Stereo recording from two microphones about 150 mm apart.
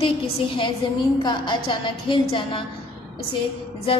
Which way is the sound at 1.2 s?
30° left (ahead or behind).